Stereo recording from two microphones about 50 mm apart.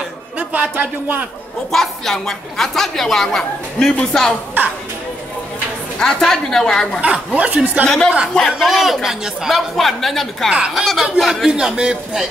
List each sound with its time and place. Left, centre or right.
0.4 s speech: right
1.7 s a woman's voice: centre
5.9 s a woman's voice: centre
7.0 s speech: right
7.8 s a woman's voice: centre
8.5 s a man's voice: centre
11.7 s a man's voice: centre